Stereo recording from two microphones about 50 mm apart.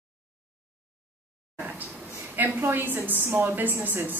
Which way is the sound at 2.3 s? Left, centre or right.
Right.